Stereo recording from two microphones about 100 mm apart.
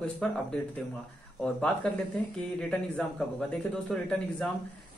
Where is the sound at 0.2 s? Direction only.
10° left (ahead or behind).